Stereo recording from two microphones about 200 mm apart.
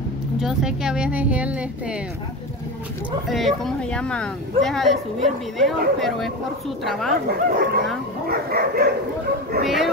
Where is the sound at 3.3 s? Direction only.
Centre (ahead or behind).